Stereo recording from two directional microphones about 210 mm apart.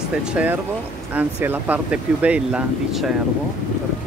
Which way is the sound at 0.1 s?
5° right (ahead or behind).